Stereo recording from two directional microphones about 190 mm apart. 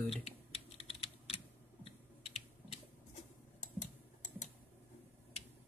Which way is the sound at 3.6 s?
40° left (ahead or behind).